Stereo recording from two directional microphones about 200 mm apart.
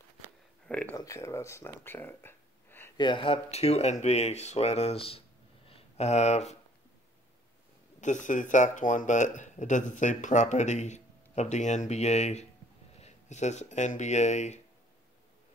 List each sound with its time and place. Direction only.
0.7 s speech: 5° left (ahead or behind)
3.0 s speech: 25° left (ahead or behind)
8.0 s speech: 40° left (ahead or behind)